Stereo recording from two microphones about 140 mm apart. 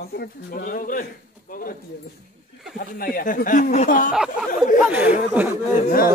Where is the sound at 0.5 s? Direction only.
85° left.